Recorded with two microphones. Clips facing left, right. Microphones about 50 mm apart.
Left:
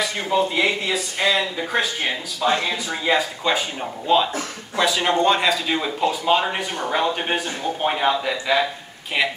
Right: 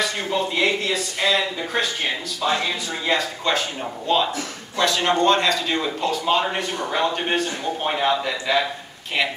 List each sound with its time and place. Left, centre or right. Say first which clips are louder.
0.0 s speech: left 2 dB; centre